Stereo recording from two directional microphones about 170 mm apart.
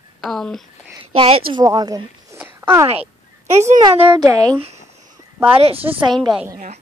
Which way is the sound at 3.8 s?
30° right (ahead or behind).